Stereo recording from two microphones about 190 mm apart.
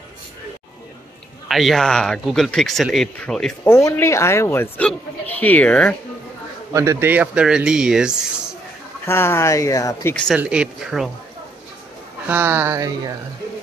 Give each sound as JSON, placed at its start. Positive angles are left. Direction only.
{"t": 1.5, "sound": "speech", "side_deg": 0}
{"t": 3.7, "sound": "speech", "side_deg": 15}
{"t": 6.7, "sound": "speech", "side_deg": -15}
{"t": 9.0, "sound": "speech", "side_deg": 15}
{"t": 10.1, "sound": "speech", "side_deg": 0}
{"t": 12.3, "sound": "speech", "side_deg": -10}